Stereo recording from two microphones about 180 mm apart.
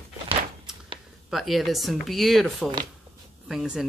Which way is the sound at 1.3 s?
Centre (ahead or behind).